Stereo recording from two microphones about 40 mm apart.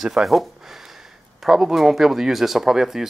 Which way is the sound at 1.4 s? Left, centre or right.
Centre.